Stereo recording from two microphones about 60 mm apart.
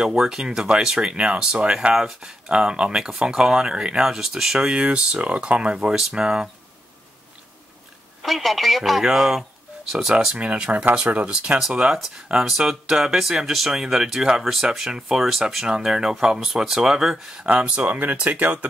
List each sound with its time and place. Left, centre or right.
0.0 s speech: centre
8.2 s speech: centre; by 18.7 s right